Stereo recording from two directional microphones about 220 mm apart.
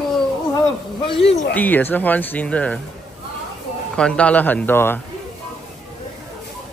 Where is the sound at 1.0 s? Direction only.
25° left (ahead or behind).